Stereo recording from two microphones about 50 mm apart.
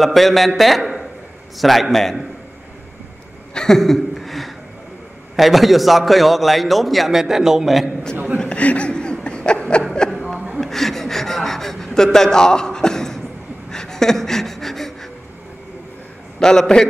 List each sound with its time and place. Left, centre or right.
0.0 s a man's voice: centre
3.5 s a man's voice: centre
8.4 s chuckle: left
10.6 s a sound: centre
13.7 s gasp: centre
16.3 s a man's voice: centre